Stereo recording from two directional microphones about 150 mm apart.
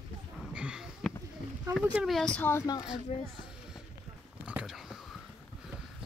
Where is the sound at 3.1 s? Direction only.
45° left (ahead or behind).